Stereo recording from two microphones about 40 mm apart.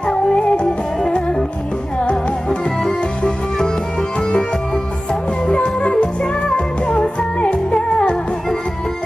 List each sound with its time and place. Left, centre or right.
0.3 s music: left
5.5 s music: left